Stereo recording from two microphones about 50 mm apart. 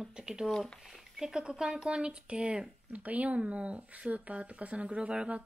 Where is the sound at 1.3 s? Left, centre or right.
Centre.